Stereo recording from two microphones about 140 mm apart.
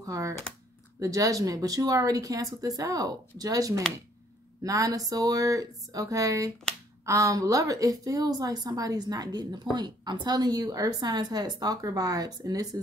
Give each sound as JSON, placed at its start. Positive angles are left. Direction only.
{"t": 0.0, "sound": "a woman's voice", "side_deg": -25}